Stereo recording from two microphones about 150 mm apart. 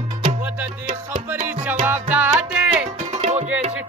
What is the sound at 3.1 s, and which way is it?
Music, 45° right (ahead or behind).